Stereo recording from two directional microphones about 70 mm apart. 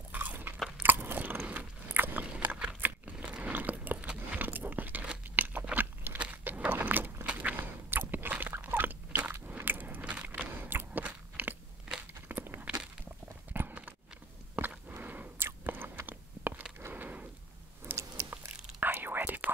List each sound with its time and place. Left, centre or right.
0.1 s crunch: right
0.8 s biting: right
12.1 s a sound: right
13.5 s biting: right
14.9 s squish: right
15.4 s biting: right
16.9 s a sound: right
17.8 s chewing: right
18.8 s whispering: right